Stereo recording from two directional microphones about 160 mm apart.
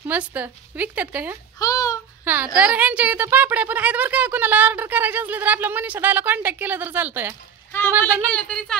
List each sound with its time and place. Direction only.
0.1 s speech: 10° right (ahead or behind)
1.6 s a sound: 20° left (ahead or behind)
2.2 s speech: 10° right (ahead or behind)
8.0 s speech: 5° left (ahead or behind)